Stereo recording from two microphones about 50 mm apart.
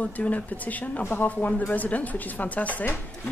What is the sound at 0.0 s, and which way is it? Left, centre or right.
Speech, left.